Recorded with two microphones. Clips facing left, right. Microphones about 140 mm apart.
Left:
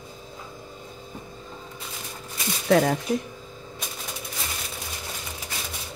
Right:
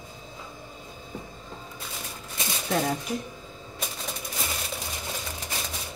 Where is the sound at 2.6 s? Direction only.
90° left.